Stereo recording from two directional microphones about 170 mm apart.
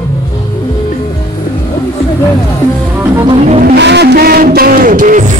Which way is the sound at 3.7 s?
85° right.